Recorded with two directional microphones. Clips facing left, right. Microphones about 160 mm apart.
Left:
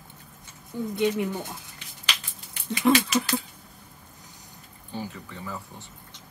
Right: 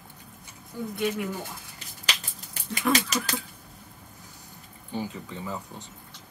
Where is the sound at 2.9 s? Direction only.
40° right (ahead or behind).